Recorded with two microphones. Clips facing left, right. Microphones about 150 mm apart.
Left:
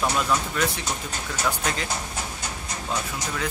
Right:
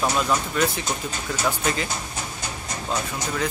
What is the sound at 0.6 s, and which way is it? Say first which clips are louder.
Speech: right 3 dB; centre (ahead or behind).